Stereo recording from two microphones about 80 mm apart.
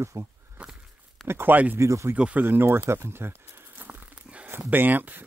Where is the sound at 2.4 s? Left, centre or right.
Right.